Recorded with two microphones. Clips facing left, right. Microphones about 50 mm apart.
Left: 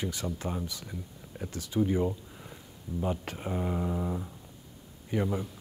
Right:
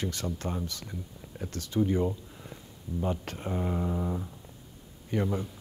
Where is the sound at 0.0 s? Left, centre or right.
Centre.